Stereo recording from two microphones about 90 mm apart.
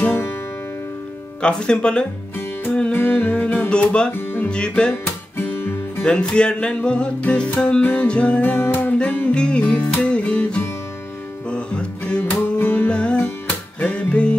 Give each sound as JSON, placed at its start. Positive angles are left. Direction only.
{"t": 1.4, "sound": "music", "side_deg": 10}
{"t": 2.9, "sound": "humming", "side_deg": 20}
{"t": 3.6, "sound": "speech", "side_deg": 10}
{"t": 4.2, "sound": "music", "side_deg": 25}
{"t": 4.5, "sound": "music", "side_deg": 10}
{"t": 5.4, "sound": "music", "side_deg": 20}